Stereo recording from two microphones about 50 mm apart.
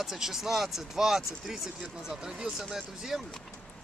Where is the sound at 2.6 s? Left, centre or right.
Centre.